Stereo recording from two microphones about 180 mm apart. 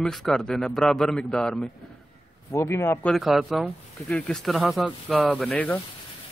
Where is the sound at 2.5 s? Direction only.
15° left (ahead or behind).